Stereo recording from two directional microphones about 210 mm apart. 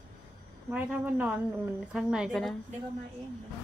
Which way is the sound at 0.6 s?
5° right (ahead or behind).